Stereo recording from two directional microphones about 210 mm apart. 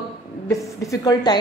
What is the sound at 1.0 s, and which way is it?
Speech, 20° left (ahead or behind).